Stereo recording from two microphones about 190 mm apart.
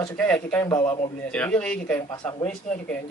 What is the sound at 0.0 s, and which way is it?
Speech, 5° left (ahead or behind).